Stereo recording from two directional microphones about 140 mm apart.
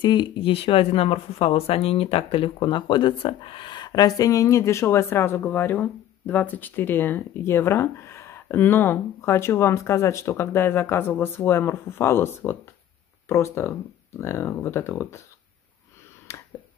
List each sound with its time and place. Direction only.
0.0 s speech: 35° left (ahead or behind); by 15.2 s 20° left (ahead or behind)
16.3 s finger snapping: 20° left (ahead or behind)